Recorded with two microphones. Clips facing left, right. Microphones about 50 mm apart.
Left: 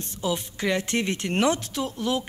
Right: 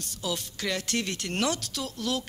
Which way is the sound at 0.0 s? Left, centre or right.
Left.